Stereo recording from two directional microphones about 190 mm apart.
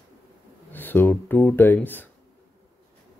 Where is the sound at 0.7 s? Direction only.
10° left (ahead or behind).